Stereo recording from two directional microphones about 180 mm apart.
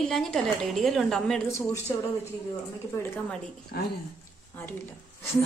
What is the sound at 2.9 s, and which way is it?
Speech, 10° left (ahead or behind).